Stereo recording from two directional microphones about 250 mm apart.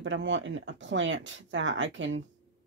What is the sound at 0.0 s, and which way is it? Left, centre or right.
Speech, right.